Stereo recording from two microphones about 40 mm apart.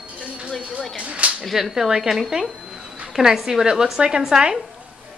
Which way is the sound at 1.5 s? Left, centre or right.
Centre.